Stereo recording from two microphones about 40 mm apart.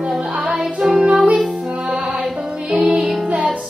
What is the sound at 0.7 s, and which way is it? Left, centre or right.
Music, centre.